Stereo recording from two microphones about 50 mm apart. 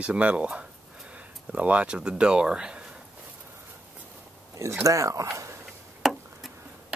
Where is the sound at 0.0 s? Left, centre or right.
Right.